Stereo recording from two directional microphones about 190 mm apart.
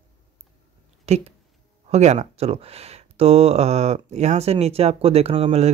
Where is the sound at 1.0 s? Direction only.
35° right (ahead or behind).